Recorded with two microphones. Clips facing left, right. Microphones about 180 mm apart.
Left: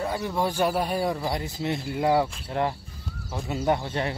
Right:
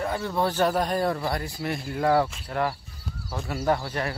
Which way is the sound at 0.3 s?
10° left (ahead or behind).